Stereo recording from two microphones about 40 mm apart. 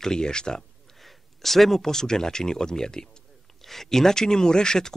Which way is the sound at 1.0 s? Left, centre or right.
Centre.